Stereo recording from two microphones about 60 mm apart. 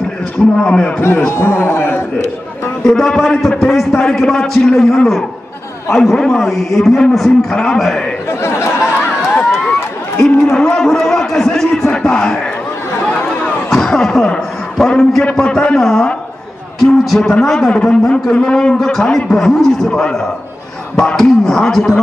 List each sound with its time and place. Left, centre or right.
0.6 s a man's voice: centre
1.0 s a man's voice: left
2.8 s a man's voice: centre
8.3 s speech: left
10.2 s a sound: centre
13.7 s a sound: centre
15.2 s a man's voice: centre
16.8 s a sound: centre
17.2 s a man's voice: centre